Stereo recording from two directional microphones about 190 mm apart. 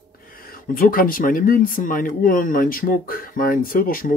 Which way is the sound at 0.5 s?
50° left (ahead or behind).